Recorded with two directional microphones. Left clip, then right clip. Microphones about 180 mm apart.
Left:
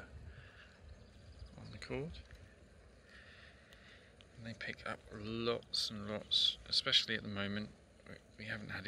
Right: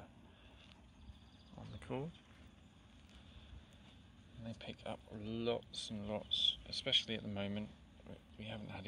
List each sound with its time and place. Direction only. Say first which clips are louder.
1.8 s mechanisms: left 2 dB; 5° left (ahead or behind)
4.5 s speech: left 4 dB; 5° left (ahead or behind)
6.3 s speech: left 3 dB; 45° left (ahead or behind)
6.7 s speech: left 4 dB; centre (ahead or behind)